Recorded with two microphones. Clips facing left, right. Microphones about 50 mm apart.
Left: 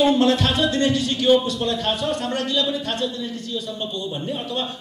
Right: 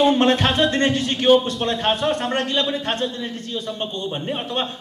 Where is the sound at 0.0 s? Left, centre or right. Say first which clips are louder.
Right 1 dB; right.